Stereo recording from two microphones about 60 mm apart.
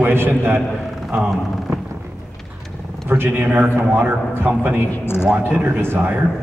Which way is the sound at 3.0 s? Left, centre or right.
Right.